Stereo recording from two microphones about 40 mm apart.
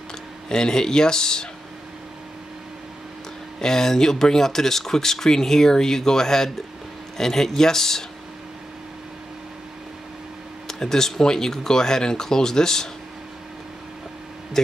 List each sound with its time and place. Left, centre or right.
0.5 s speech: centre
3.6 s speech: centre
10.7 s speech: centre